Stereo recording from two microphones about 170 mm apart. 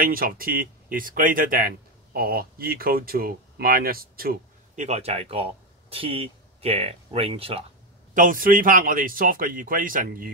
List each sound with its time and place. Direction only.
0.0 s speech: 55° right (ahead or behind)
4.7 s speech: 40° right (ahead or behind)
8.1 s speech: 50° right (ahead or behind)